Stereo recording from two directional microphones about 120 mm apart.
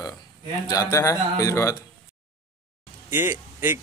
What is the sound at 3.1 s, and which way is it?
Speech, 20° right (ahead or behind).